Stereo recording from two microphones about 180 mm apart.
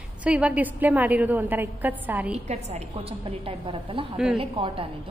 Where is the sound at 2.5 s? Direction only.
40° right (ahead or behind).